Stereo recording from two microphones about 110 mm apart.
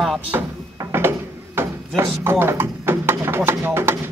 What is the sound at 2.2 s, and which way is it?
Speech, 20° right (ahead or behind).